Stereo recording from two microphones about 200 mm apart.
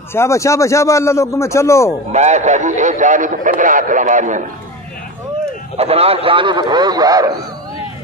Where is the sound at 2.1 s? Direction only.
35° right (ahead or behind).